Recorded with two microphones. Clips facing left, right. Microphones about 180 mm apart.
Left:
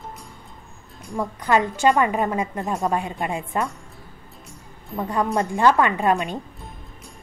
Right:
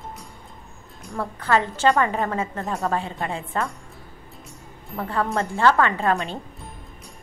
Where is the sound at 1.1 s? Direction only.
15° left (ahead or behind).